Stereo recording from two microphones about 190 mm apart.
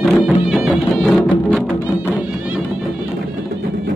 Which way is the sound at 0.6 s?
5° right (ahead or behind).